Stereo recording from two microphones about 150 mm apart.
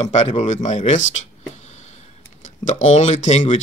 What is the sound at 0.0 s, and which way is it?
Speech, 45° left (ahead or behind).